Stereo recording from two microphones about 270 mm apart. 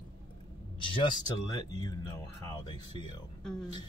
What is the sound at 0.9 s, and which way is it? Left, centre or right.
Speech, centre.